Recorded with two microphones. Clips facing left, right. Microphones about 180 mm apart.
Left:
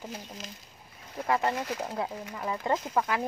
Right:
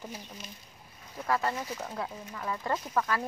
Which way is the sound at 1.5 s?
65° left (ahead or behind).